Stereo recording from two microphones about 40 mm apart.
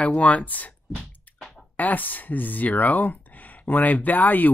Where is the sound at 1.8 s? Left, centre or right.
Left.